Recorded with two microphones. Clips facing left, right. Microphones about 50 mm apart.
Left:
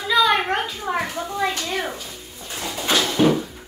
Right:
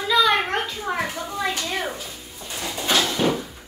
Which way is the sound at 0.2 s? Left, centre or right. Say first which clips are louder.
Left 3 dB; centre.